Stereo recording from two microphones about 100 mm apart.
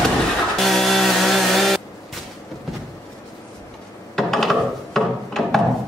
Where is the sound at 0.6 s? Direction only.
Centre (ahead or behind).